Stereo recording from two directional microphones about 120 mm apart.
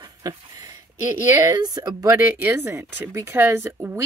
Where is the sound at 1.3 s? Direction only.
30° right (ahead or behind).